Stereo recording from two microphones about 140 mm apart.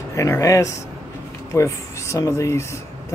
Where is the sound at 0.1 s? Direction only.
20° left (ahead or behind).